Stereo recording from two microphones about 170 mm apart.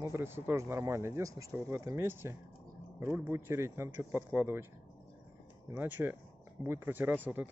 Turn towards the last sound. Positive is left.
turn(degrees=-10)  # may be behind; listen again after turning